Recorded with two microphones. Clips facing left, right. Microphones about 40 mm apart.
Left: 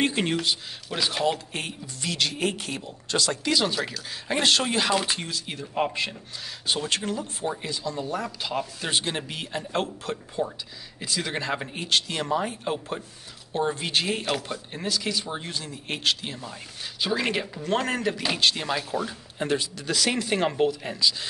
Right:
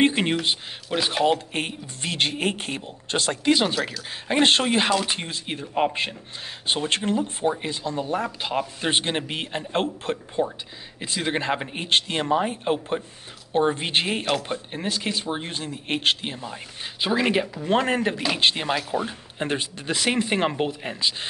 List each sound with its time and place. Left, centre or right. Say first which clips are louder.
0.0 s speech: right 4 dB; right
4.1 s speech: right 4 dB; right
17.2 s speech: right 5 dB; centre; by 21.3 s right